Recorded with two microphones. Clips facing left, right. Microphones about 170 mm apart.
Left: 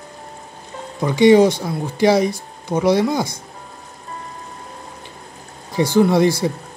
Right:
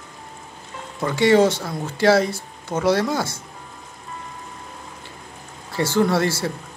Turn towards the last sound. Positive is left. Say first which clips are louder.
# left 5 dB
turn(degrees=15)  # may be behind; listen again after turning